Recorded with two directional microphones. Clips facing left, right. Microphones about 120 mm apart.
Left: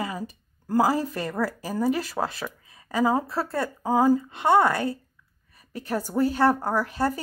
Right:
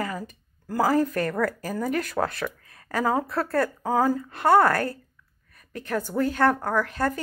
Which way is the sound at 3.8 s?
15° left (ahead or behind).